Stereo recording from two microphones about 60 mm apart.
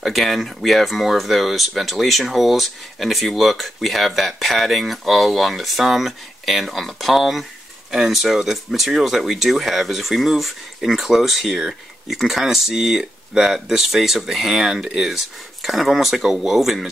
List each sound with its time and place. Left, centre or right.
0.0 s speech: centre